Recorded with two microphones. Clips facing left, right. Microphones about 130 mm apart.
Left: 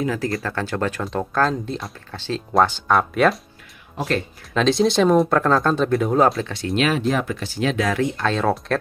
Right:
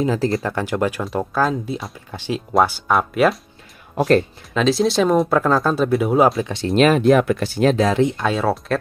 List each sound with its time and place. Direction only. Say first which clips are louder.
0.0 s speech: right 4 dB; 25° right (ahead or behind)
0.5 s speech: right 3 dB; 15° right (ahead or behind)
4.6 s speech: even; centre (ahead or behind)
6.4 s speech: right 3 dB; 25° right (ahead or behind)
6.8 s speech: right 7 dB; 55° right (ahead or behind)
7.6 s speech: right 5 dB; 30° right (ahead or behind)
8.2 s speech: right 1 dB; 10° right (ahead or behind)